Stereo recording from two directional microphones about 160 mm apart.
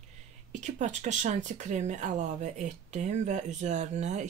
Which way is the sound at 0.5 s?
50° right (ahead or behind).